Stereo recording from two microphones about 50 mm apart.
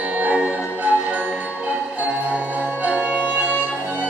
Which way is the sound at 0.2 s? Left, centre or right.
Right.